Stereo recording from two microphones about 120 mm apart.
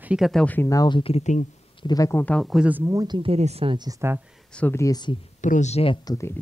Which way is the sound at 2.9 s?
40° right (ahead or behind).